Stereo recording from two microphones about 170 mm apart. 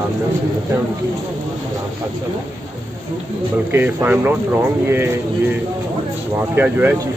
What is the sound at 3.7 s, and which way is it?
Speech, 10° right (ahead or behind).